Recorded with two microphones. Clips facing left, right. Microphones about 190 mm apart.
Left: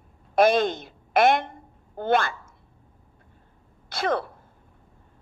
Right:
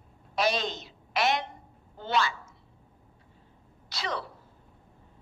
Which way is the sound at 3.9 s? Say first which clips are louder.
Left 9 dB; 55° left (ahead or behind).